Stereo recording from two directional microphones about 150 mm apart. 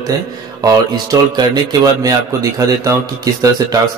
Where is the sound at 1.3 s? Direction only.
25° right (ahead or behind).